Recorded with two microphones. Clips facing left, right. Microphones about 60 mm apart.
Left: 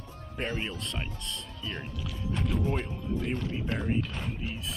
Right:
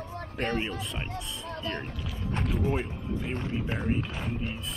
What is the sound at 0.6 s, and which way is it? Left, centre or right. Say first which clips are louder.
Speech: right 3 dB; centre.